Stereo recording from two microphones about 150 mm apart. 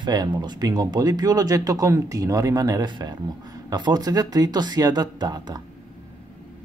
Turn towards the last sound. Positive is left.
turn(degrees=-30)  # may be behind; listen again after turning